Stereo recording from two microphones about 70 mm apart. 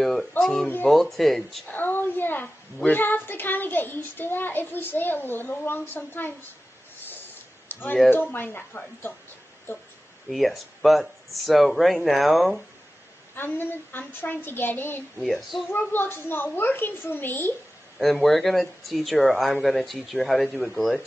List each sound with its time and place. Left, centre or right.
0.0 s a sound: centre
0.4 s speech: centre
1.7 s speech: left
7.6 s a sound: left
8.1 s a woman's voice: left
10.3 s speech: centre
13.4 s a woman's voice: left
15.1 s speech: centre
15.7 s a woman's voice: left
17.9 s speech: centre